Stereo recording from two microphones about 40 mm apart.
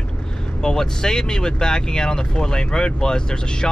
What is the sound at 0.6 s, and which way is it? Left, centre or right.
Speech, centre.